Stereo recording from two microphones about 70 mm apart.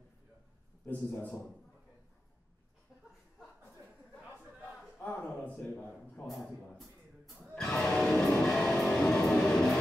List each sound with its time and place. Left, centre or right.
0.8 s a man's voice: left
4.9 s a sound: centre
6.2 s a man's voice: centre
7.5 s music: centre